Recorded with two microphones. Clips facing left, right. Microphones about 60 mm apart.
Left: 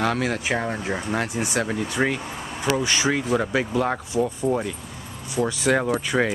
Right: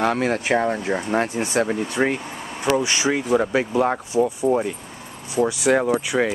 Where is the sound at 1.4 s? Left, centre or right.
Right.